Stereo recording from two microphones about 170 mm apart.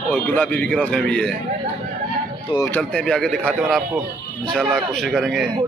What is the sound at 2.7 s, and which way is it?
A man's voice, 5° left (ahead or behind).